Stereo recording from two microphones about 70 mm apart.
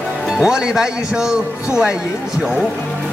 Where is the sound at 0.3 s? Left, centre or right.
Centre.